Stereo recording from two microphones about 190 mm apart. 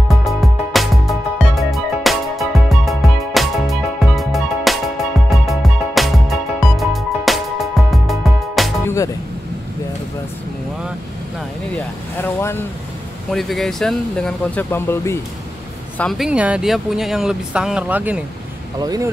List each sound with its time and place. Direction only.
0.1 s music: centre (ahead or behind)
8.8 s music: 15° left (ahead or behind)
11.7 s vehicle: 10° left (ahead or behind)
13.3 s speech: centre (ahead or behind)
16.0 s speech: centre (ahead or behind)
18.8 s speech: 20° right (ahead or behind)